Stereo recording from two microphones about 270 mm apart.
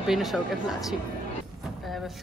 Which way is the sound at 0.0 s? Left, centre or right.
Centre.